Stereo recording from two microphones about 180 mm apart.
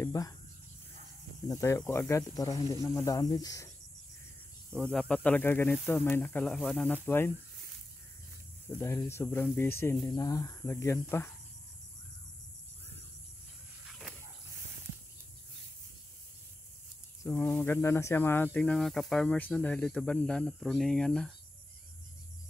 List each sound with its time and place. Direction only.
0.0 s a sound: 20° left (ahead or behind)
1.5 s speech: 15° left (ahead or behind)
4.7 s speech: 5° left (ahead or behind)
7.1 s speech: 15° left (ahead or behind)
8.6 s speech: 15° left (ahead or behind)
13.8 s dog: centre (ahead or behind)
17.2 s speech: 15° left (ahead or behind)